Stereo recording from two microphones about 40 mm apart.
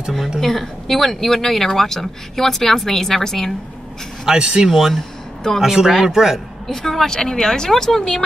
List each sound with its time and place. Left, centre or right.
0.4 s speech: centre
4.3 s speech: centre
4.6 s speech: centre
6.7 s speech: centre